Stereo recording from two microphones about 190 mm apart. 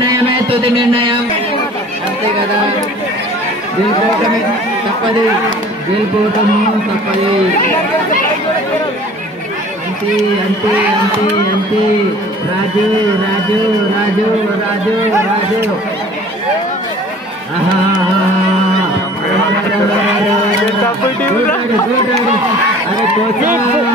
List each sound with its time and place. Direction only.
0.5 s music: 30° right (ahead or behind)